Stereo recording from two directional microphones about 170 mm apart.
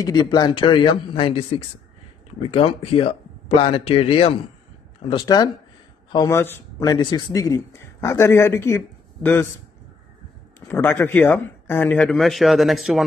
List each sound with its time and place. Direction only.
0.0 s a man's voice: 25° left (ahead or behind)
10.7 s speech: 10° left (ahead or behind)